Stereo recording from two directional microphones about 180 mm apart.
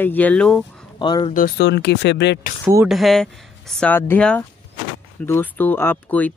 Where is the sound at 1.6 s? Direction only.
70° left (ahead or behind).